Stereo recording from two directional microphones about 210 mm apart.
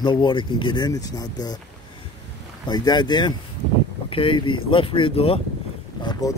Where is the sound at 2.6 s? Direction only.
20° left (ahead or behind).